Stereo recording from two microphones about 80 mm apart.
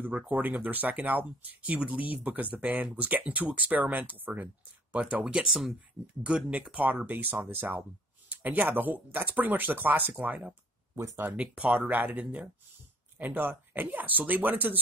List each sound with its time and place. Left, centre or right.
0.0 s speech: right
11.0 s speech: right
11.3 s speech: centre